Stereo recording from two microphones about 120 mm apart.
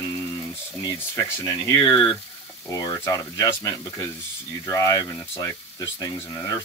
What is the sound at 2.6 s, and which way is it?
Speech, 30° left (ahead or behind).